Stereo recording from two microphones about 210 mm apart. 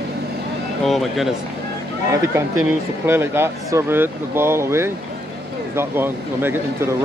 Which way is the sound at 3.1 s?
10° right (ahead or behind).